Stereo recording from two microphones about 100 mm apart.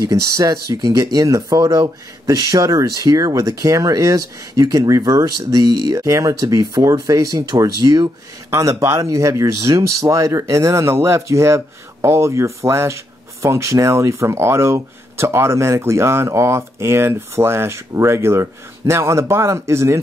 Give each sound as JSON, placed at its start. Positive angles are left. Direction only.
{"t": 0.0, "sound": "speech", "side_deg": -35}
{"t": 8.5, "sound": "speech", "side_deg": -30}